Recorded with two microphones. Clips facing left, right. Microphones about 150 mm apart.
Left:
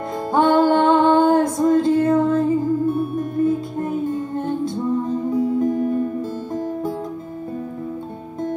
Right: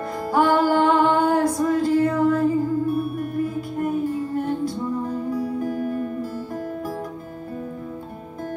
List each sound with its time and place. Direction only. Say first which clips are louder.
0.3 s music: left 3 dB; 25° left (ahead or behind)